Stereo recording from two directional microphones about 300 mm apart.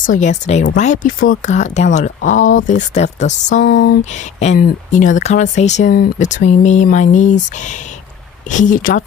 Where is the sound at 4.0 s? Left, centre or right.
Left.